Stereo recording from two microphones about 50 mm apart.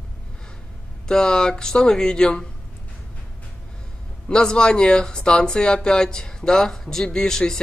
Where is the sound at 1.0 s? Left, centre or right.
Centre.